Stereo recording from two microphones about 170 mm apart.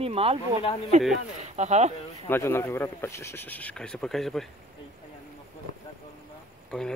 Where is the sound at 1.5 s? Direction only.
40° right (ahead or behind).